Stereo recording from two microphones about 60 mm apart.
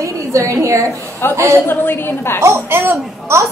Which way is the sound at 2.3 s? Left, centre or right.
Right.